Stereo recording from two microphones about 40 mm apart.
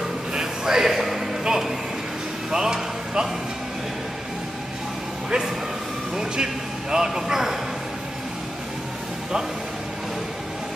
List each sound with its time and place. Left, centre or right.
0.3 s a sound: centre
1.4 s music: centre
6.1 s a man's voice: centre